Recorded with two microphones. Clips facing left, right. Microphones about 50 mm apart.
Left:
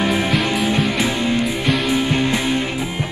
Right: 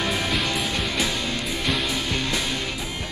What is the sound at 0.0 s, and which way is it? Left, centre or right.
Music, left.